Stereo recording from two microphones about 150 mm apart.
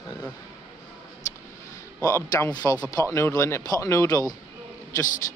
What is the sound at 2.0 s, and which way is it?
Speech, 20° left (ahead or behind).